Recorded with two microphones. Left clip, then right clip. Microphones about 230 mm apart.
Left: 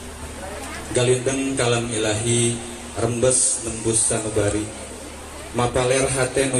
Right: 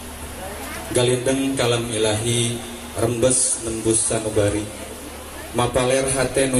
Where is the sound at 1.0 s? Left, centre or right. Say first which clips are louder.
Right 1 dB; right.